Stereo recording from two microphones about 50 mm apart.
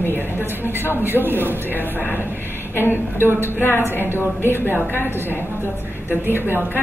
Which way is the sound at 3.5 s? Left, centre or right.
Left.